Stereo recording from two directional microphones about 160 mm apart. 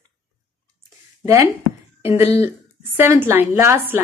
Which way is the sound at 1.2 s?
20° right (ahead or behind).